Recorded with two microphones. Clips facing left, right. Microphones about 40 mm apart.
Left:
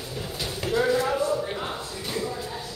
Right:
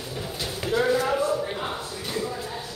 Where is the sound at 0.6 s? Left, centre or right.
Centre.